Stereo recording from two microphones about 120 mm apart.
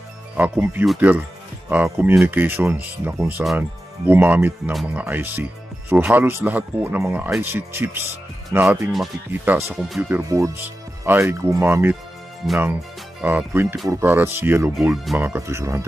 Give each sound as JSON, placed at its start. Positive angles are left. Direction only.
{"t": 0.4, "sound": "speech", "side_deg": -15}
{"t": 13.2, "sound": "speech", "side_deg": -15}
{"t": 14.8, "sound": "speech", "side_deg": 0}
{"t": 15.1, "sound": "speech", "side_deg": -20}